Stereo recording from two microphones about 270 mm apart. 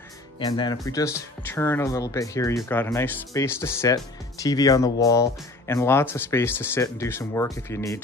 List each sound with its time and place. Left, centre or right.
0.4 s speech: centre